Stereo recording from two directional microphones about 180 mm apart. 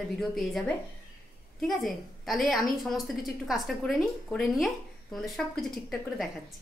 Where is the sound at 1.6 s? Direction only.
Centre (ahead or behind).